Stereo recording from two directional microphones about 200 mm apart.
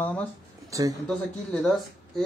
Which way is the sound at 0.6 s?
15° right (ahead or behind).